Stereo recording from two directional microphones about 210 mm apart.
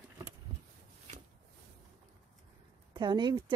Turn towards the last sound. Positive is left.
turn(degrees=-20)  # may be behind; listen again after turning